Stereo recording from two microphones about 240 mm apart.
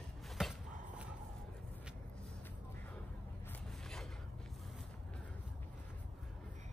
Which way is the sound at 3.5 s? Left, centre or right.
Centre.